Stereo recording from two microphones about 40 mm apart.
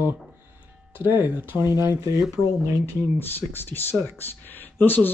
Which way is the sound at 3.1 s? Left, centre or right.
Left.